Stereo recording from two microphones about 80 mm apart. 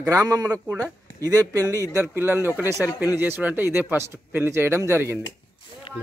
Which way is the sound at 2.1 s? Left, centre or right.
Right.